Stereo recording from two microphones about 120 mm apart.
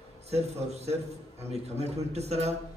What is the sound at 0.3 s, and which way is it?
A man's voice, 60° right (ahead or behind).